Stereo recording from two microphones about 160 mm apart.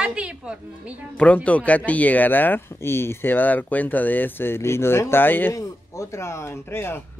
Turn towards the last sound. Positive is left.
turn(degrees=15)  # may be behind; listen again after turning